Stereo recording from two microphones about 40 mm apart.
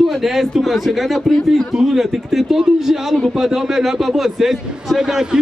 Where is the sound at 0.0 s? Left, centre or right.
Centre.